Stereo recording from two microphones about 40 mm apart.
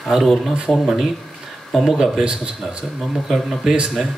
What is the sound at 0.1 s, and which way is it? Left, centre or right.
A man's voice, centre.